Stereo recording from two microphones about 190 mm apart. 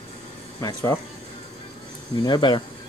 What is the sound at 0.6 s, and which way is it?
Speech, 15° left (ahead or behind).